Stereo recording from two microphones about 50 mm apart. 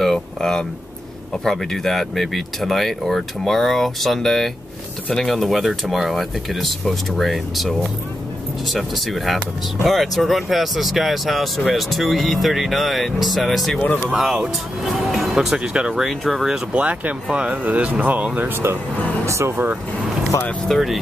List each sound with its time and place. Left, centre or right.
0.0 s a sound: centre
1.3 s speech: centre
16.7 s speech: right
19.2 s speech: right
20.6 s speech: centre